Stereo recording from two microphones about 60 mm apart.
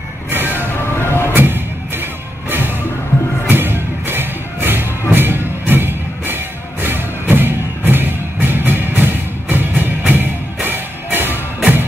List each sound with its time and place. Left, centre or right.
0.3 s vehicle: right
0.9 s vehicle: left
1.3 s music: right
3.4 s music: right